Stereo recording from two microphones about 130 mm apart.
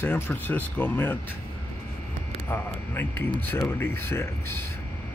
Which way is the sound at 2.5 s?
15° left (ahead or behind).